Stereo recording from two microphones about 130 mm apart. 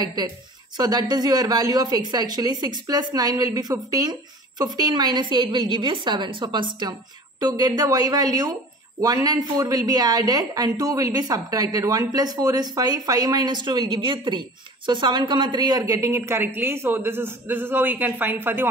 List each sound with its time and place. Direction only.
0.0 s a woman's voice: 30° right (ahead or behind); by 18.7 s 15° right (ahead or behind)